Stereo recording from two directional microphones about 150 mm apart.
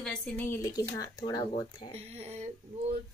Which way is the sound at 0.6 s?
25° left (ahead or behind).